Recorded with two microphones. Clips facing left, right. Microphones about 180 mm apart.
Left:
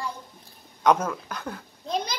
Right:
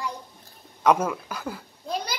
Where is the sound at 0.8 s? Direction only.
5° right (ahead or behind).